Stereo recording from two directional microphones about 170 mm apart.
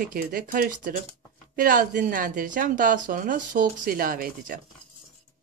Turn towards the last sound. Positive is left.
turn(degrees=-60)  # may be behind; listen again after turning